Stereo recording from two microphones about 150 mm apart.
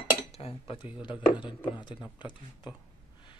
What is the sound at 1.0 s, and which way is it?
Speech, 35° left (ahead or behind).